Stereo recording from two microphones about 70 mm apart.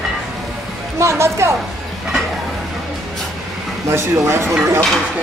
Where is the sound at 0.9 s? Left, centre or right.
Right.